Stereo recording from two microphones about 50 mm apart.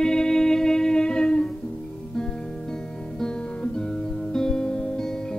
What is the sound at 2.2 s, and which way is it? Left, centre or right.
Guitar, centre.